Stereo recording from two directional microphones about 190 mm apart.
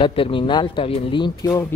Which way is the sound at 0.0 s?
25° left (ahead or behind).